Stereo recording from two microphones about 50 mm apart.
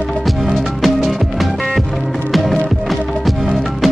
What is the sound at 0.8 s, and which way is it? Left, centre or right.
Music, centre.